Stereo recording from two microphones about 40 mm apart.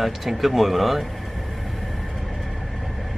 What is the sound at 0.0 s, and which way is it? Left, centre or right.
Speech, centre.